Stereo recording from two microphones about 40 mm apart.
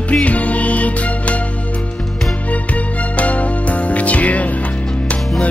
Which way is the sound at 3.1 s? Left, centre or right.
Left.